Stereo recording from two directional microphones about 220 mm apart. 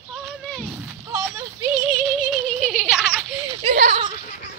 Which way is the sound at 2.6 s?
5° left (ahead or behind).